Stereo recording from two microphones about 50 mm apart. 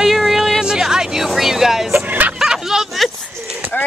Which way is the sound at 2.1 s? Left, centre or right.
Right.